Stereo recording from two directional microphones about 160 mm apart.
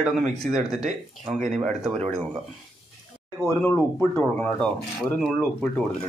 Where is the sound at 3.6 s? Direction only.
15° left (ahead or behind).